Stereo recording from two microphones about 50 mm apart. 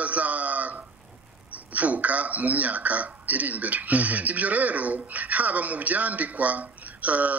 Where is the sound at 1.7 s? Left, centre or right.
Right.